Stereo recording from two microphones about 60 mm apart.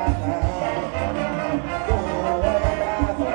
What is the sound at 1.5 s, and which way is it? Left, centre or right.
Music, centre.